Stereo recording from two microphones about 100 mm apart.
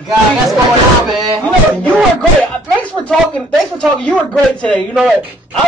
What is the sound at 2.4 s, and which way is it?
Speech, 15° left (ahead or behind).